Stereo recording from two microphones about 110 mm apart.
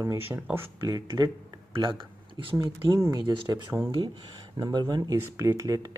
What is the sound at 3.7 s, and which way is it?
Speech, centre (ahead or behind).